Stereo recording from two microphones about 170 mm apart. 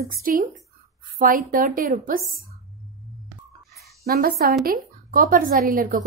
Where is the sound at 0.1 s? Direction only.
55° right (ahead or behind).